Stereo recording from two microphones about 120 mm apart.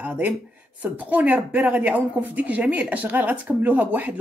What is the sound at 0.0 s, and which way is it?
A woman's voice, 15° right (ahead or behind).